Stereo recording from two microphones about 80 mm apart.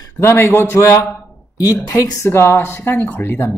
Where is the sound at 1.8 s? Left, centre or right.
Left.